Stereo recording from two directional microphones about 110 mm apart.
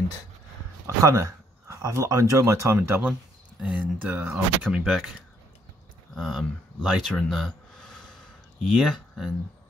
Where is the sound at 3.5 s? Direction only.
5° right (ahead or behind).